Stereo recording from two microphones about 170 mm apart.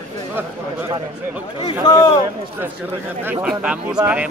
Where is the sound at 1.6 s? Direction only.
25° left (ahead or behind).